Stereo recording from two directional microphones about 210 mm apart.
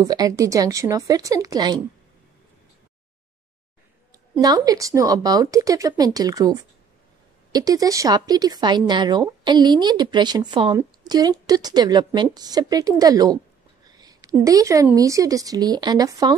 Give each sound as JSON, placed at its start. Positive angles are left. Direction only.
{"t": 0.0, "sound": "a woman's voice", "side_deg": -15}
{"t": 4.1, "sound": "a woman's voice", "side_deg": -15}
{"t": 13.8, "sound": "a sound", "side_deg": -20}
{"t": 14.3, "sound": "a woman's voice", "side_deg": -15}